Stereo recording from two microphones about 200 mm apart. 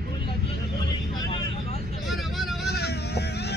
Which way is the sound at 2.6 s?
55° left (ahead or behind).